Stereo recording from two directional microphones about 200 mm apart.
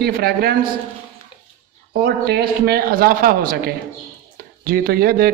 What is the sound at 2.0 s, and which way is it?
A woman's voice, 50° right (ahead or behind).